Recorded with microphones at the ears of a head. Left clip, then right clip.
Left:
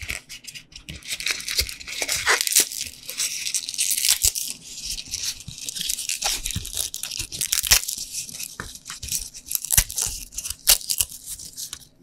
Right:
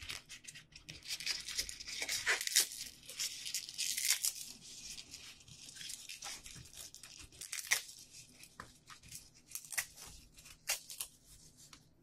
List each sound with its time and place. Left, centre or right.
1.0 s tearing: left